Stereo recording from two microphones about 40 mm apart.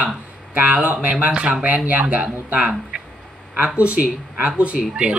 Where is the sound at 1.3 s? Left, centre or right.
Right.